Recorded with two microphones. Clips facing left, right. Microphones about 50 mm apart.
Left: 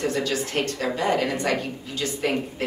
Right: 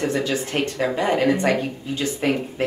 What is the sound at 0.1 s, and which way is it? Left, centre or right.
Speech, centre.